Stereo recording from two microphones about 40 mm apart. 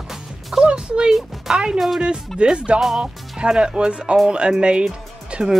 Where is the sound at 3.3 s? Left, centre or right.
Right.